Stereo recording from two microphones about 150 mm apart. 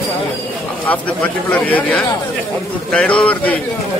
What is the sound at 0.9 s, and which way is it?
A man's voice, 10° left (ahead or behind).